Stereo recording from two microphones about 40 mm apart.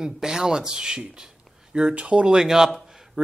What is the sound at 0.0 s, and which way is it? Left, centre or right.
A man's voice, centre.